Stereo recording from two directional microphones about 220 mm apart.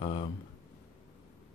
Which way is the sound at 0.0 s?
25° left (ahead or behind).